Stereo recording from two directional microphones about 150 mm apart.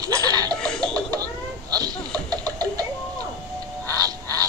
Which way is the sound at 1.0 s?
25° right (ahead or behind).